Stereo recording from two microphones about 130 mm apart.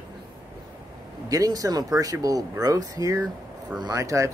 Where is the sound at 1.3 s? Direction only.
25° right (ahead or behind).